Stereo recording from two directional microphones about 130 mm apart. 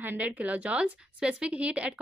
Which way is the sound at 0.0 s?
15° right (ahead or behind).